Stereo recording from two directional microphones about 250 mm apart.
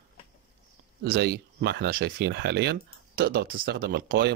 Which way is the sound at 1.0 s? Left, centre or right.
Right.